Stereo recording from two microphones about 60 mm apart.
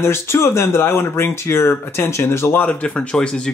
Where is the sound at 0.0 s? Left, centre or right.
Left.